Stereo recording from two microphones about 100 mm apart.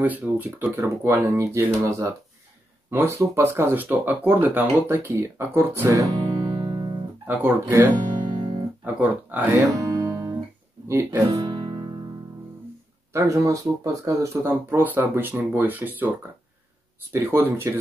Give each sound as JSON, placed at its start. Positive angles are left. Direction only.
{"t": 0.0, "sound": "speech", "side_deg": -15}
{"t": 7.2, "sound": "speech", "side_deg": -20}
{"t": 8.3, "sound": "guitar", "side_deg": -50}
{"t": 8.8, "sound": "speech", "side_deg": -15}
{"t": 9.8, "sound": "guitar", "side_deg": -35}
{"t": 10.9, "sound": "speech", "side_deg": -30}
{"t": 11.4, "sound": "music", "side_deg": -50}
{"t": 13.1, "sound": "speech", "side_deg": -35}